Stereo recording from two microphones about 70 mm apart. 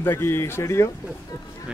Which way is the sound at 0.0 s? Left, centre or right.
Left.